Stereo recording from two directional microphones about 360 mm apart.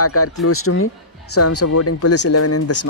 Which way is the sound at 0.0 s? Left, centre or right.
Left.